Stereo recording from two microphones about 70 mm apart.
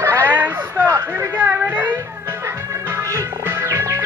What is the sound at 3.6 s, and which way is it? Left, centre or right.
Music, right.